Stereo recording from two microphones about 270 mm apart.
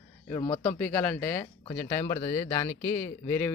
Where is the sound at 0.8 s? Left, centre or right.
Centre.